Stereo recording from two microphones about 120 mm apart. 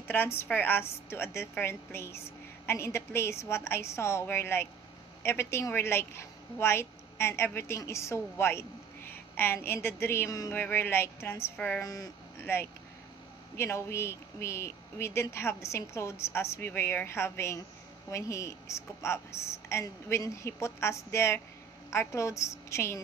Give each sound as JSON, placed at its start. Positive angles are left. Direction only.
{"t": 0.1, "sound": "a woman's voice", "side_deg": 20}
{"t": 11.8, "sound": "speech", "side_deg": 30}